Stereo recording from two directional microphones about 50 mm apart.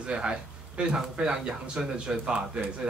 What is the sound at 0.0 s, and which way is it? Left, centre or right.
Speech, centre.